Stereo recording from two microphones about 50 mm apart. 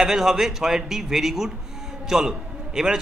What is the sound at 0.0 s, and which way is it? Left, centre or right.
Speech, centre.